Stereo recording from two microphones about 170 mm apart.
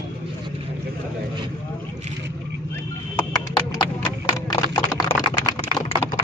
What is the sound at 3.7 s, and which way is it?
Clip-clop, 25° left (ahead or behind).